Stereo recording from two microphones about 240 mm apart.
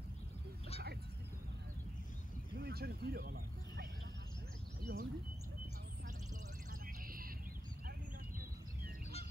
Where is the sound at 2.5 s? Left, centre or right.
Right.